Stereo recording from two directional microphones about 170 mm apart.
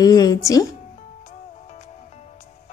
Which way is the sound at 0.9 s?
45° left (ahead or behind).